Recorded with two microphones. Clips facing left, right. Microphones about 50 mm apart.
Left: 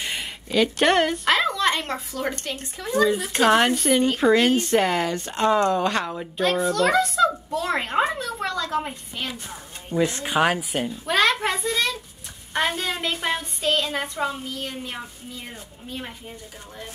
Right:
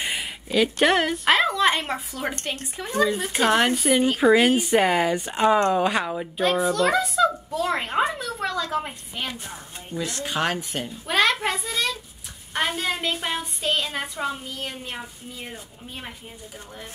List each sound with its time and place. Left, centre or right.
0.0 s a woman's voice: centre
9.9 s speech: left
10.3 s speech: centre